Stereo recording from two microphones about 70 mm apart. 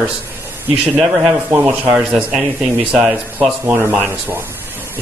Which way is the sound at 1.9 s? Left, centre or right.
Centre.